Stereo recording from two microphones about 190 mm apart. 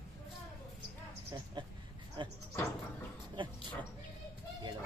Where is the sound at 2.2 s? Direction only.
25° right (ahead or behind).